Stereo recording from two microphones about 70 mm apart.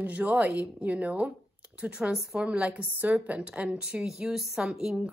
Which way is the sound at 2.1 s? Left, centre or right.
Centre.